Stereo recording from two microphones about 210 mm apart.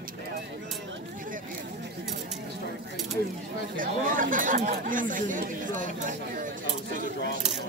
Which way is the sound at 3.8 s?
40° right (ahead or behind).